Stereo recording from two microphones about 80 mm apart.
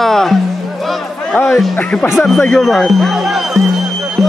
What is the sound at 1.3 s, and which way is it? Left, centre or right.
Music, left.